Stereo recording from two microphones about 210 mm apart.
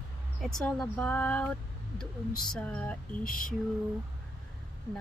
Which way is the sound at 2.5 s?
5° left (ahead or behind).